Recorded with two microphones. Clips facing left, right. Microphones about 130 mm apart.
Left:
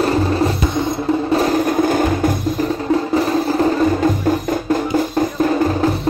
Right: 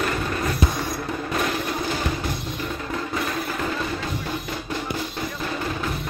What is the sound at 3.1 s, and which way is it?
Music, 35° left (ahead or behind).